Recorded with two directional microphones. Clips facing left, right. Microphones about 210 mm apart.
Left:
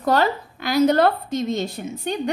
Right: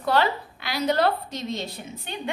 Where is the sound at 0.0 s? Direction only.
45° left (ahead or behind).